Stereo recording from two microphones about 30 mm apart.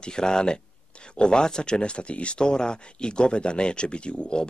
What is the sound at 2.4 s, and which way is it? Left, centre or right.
Speech, left.